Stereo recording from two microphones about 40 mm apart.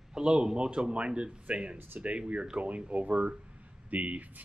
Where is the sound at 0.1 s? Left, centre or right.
Right.